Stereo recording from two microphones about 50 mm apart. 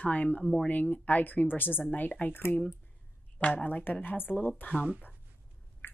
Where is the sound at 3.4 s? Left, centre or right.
Left.